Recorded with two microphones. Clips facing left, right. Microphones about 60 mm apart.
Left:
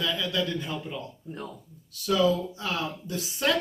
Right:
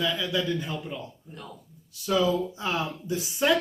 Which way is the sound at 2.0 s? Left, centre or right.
Centre.